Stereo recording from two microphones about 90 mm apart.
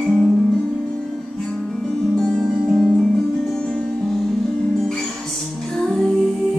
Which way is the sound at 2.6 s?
Centre (ahead or behind).